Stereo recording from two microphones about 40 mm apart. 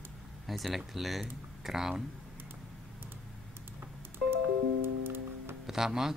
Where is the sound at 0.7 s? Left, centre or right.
Centre.